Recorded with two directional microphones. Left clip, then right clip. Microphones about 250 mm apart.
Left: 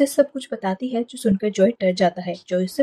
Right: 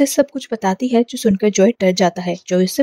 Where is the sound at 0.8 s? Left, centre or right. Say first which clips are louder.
Right 8 dB; right.